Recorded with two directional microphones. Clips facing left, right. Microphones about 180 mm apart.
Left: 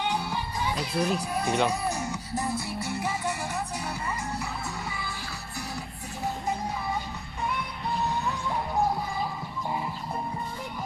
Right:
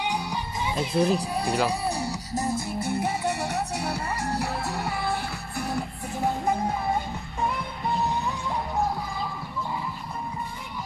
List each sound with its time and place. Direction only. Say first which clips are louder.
0.0 s music: even; 15° right (ahead or behind); by 1.6 s 35° right (ahead or behind)
1.7 s speech: right 2 dB; 35° right (ahead or behind); by 4.0 s 75° right (ahead or behind)
4.1 s music: right 5 dB; 75° right (ahead or behind); by 7.0 s 55° right (ahead or behind)